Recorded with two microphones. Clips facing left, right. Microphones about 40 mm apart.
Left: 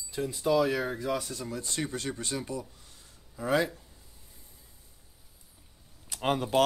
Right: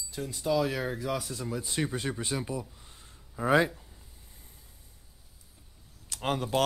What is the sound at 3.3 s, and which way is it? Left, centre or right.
Speech, right.